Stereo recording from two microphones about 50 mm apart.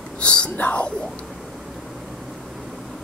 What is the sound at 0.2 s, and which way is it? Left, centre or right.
Whispering, centre.